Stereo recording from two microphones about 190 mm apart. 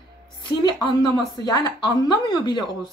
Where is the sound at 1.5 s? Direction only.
20° left (ahead or behind).